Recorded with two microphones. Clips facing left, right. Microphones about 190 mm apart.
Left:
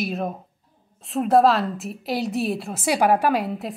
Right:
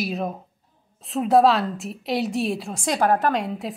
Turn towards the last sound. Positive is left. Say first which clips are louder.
# left 1 dB
turn(degrees=5)  # may be behind; listen again after turning